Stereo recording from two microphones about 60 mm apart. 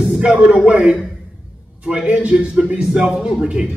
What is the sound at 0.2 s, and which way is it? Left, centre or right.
A man's voice, centre.